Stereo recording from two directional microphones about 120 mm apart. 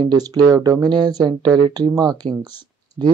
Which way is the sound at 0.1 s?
35° right (ahead or behind).